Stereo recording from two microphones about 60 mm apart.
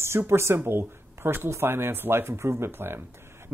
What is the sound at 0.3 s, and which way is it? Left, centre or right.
Speech, right.